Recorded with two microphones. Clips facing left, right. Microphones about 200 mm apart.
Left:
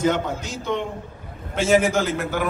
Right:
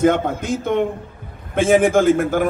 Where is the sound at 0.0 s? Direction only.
55° right (ahead or behind).